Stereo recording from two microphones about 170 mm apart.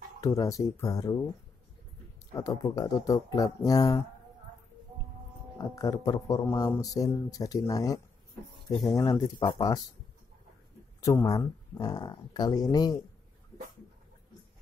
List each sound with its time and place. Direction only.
0.2 s speech: 20° left (ahead or behind)
2.3 s speech: 20° left (ahead or behind)
5.6 s speech: 20° left (ahead or behind)
11.0 s speech: 20° left (ahead or behind)